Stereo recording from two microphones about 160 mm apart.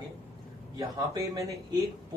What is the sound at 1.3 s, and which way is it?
Speech, 20° right (ahead or behind).